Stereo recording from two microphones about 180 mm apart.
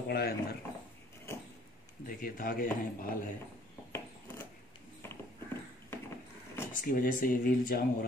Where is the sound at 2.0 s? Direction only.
55° left (ahead or behind).